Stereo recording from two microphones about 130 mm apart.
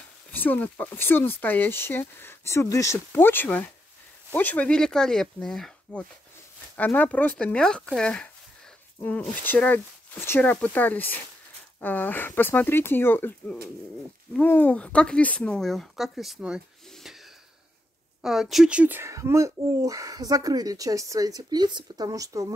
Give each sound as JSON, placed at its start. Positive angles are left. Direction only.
{"t": 0.3, "sound": "speech", "side_deg": 15}
{"t": 16.9, "sound": "snort", "side_deg": 0}
{"t": 18.2, "sound": "speech", "side_deg": -5}